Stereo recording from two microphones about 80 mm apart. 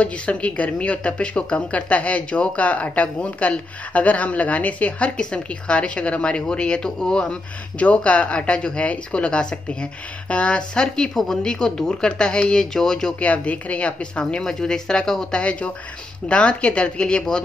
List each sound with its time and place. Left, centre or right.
0.0 s speech: centre